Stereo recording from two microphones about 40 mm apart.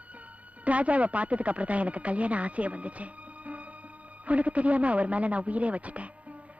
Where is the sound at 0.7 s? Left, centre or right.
Right.